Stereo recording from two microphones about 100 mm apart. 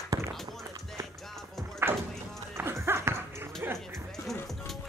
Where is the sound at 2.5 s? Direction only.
25° right (ahead or behind).